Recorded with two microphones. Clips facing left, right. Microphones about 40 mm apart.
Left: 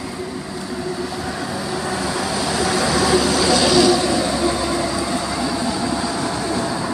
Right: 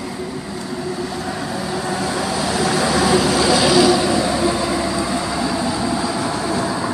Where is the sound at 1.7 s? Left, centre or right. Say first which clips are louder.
Right 1 dB; centre.